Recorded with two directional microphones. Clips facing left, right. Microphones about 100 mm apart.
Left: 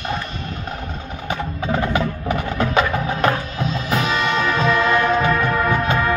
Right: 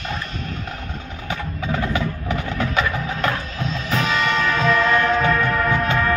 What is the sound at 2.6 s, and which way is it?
Wood block, 30° left (ahead or behind).